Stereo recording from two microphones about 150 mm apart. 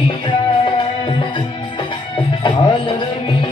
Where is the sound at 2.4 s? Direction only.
35° left (ahead or behind).